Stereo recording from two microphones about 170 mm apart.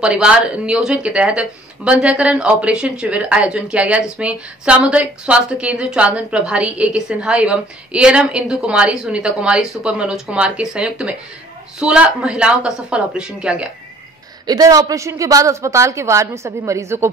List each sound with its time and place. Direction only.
0.0 s speech: 5° right (ahead or behind)
14.4 s speech: 20° right (ahead or behind)